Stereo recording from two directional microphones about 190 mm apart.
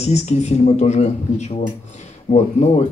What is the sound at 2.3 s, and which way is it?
Speech, 35° left (ahead or behind).